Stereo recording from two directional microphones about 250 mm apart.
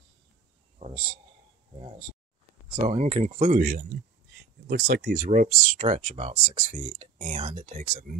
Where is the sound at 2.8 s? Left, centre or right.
Right.